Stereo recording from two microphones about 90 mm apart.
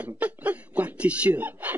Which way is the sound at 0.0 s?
15° right (ahead or behind).